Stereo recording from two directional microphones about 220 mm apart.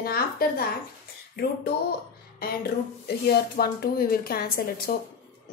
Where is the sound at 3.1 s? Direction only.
45° left (ahead or behind).